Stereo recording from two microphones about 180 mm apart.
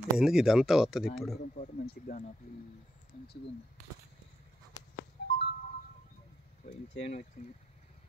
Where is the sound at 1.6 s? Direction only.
45° left (ahead or behind).